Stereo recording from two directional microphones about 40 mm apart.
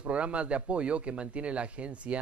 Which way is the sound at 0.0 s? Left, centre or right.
Right.